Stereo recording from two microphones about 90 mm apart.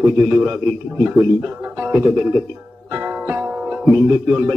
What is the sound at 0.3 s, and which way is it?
Speech, 5° right (ahead or behind).